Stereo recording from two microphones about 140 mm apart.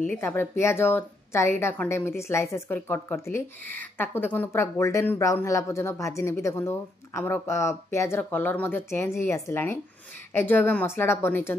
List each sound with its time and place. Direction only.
0.2 s a woman's voice: 15° left (ahead or behind)